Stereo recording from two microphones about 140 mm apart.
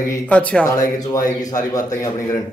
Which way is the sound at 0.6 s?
25° left (ahead or behind).